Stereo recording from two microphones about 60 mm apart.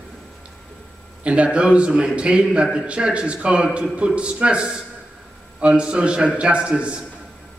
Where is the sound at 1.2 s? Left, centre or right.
Centre.